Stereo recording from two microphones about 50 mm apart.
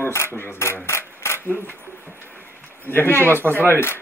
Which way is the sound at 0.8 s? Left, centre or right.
Left.